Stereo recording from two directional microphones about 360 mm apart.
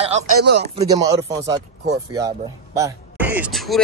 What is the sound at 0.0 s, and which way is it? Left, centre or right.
Speech, right.